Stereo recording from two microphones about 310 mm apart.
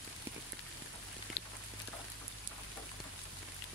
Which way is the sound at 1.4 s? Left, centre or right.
Left.